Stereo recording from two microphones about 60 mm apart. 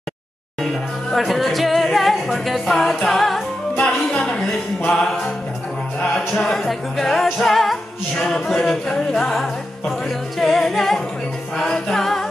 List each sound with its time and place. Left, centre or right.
1.1 s music: centre
3.7 s music: left
4.2 s a sound: centre
6.1 s music: centre